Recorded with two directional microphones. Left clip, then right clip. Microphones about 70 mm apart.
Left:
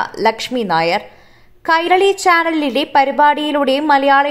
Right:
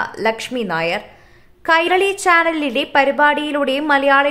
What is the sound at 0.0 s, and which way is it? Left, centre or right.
A woman's voice, left.